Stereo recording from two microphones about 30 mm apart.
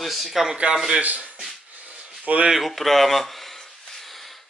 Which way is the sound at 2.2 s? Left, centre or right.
Right.